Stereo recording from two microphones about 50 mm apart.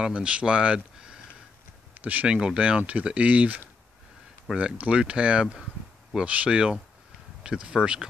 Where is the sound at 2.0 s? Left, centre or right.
Right.